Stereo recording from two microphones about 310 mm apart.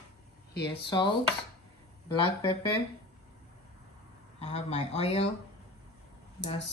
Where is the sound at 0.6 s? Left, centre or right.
Centre.